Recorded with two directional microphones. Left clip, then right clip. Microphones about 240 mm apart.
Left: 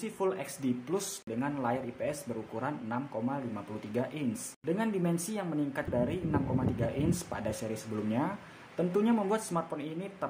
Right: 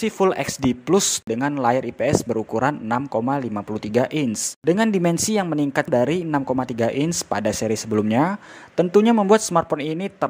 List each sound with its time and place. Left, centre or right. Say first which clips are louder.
0.0 s speech: right 13 dB; right